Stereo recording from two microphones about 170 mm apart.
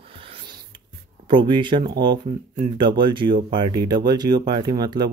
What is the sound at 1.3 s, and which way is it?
Speech, 30° right (ahead or behind).